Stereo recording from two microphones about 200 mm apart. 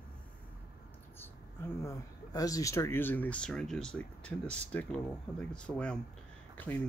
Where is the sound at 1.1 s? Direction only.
10° left (ahead or behind).